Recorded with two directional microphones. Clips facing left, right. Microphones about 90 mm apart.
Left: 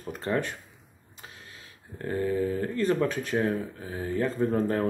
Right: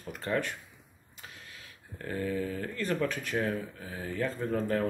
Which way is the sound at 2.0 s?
30° left (ahead or behind).